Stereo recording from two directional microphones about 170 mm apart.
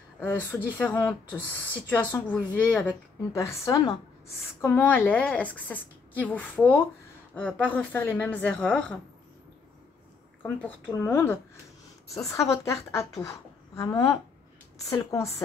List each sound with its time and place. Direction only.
0.2 s a woman's voice: 10° left (ahead or behind)
11.1 s a woman's voice: 15° left (ahead or behind)